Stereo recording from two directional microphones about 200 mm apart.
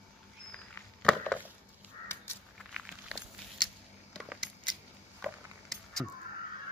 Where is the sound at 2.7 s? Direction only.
Centre (ahead or behind).